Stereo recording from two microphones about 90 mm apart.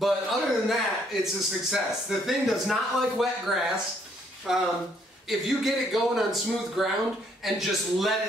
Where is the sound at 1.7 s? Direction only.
5° right (ahead or behind).